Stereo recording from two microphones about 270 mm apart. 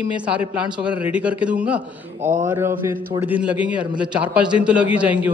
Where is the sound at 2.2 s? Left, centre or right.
Right.